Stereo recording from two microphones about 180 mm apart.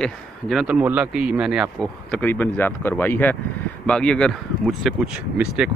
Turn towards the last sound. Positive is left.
turn(degrees=-5)  # may be behind; listen again after turning